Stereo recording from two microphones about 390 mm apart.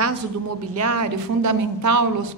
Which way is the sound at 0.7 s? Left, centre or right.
Right.